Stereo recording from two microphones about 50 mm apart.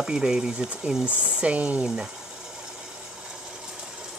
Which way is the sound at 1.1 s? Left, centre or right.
Right.